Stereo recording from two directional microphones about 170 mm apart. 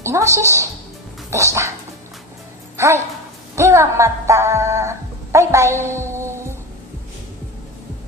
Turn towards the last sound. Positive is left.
turn(degrees=-15)  # may be behind; listen again after turning